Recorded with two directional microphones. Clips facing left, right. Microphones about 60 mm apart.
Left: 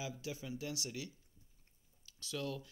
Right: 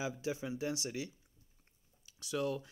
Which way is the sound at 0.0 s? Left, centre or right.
Right.